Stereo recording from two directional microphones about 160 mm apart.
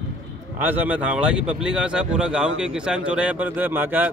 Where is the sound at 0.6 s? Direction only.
10° right (ahead or behind).